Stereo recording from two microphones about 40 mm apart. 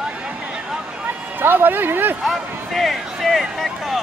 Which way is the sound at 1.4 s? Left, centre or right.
Right.